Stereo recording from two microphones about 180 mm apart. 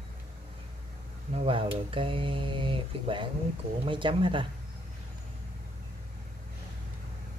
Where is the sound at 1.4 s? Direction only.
30° right (ahead or behind).